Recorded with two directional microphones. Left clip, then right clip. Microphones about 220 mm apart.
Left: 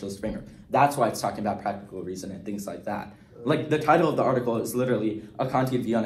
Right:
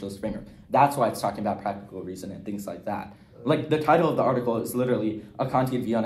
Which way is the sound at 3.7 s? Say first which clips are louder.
Even; 25° right (ahead or behind).